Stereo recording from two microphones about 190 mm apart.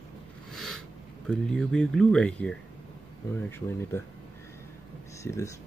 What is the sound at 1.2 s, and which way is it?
Speech, 5° left (ahead or behind).